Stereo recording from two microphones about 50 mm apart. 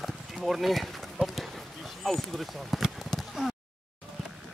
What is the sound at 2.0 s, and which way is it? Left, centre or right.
Speech, centre.